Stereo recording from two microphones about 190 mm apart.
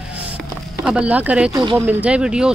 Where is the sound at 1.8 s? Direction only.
10° right (ahead or behind).